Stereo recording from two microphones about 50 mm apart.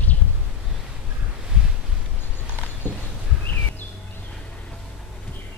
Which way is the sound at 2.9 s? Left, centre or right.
Left.